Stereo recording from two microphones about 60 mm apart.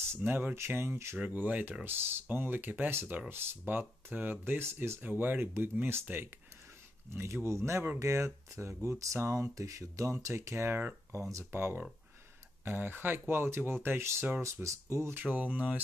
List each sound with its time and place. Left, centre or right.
0.1 s speech: right
1.1 s speech: right
1.9 s speech: right
3.3 s speech: right
5.0 s speech: right
14.4 s speech: right
15.2 s speech: right